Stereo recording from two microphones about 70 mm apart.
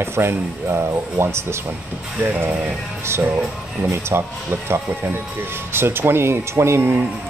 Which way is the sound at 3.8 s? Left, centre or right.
Right.